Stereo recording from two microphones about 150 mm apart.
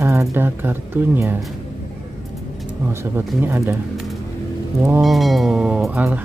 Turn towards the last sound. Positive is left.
turn(degrees=-10)  # may be behind; listen again after turning